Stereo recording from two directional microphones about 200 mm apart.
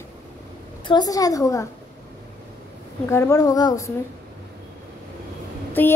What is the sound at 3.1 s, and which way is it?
Speech, 15° left (ahead or behind).